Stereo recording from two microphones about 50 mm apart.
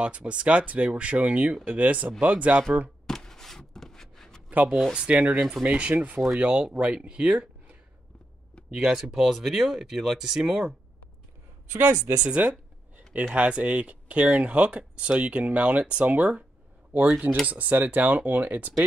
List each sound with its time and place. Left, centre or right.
0.0 s speech: right
3.1 s a sound: centre
4.5 s speech: right
8.7 s speech: centre
11.7 s speech: right
12.3 s a sound: right
13.3 s speech: right
17.5 s speech: right